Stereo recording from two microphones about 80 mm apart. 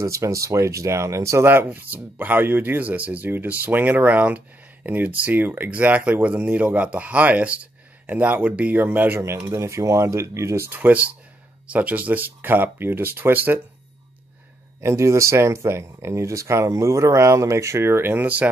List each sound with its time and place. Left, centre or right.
0.0 s speech: right
1.5 s speech: right
9.5 s speech: right
10.7 s speech: centre
14.8 s speech: right